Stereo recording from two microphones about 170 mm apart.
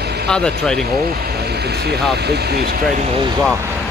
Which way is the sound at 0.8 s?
65° right (ahead or behind).